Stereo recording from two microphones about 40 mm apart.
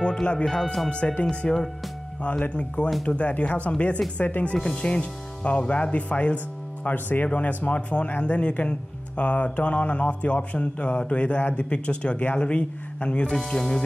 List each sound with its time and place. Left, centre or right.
0.0 s speech: left
4.6 s speech: left
7.3 s speech: left
13.5 s speech: centre